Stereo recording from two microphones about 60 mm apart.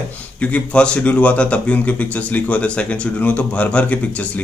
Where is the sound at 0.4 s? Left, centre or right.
Centre.